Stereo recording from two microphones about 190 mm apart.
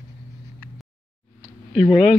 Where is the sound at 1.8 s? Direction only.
5° right (ahead or behind).